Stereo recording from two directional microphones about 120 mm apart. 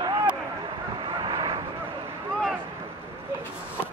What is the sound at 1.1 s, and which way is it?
Vehicle, 40° right (ahead or behind).